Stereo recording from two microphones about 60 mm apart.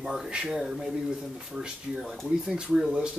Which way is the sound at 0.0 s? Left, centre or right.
Centre.